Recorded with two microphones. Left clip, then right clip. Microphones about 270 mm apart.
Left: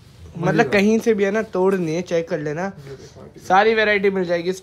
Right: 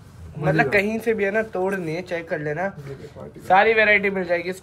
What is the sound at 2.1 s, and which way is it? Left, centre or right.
Speech, left.